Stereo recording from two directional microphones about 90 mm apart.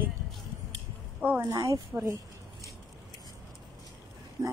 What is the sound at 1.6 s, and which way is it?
Speech, 35° right (ahead or behind).